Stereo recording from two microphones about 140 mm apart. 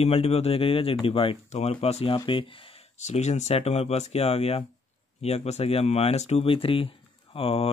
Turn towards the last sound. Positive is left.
turn(degrees=40)  # may be behind; listen again after turning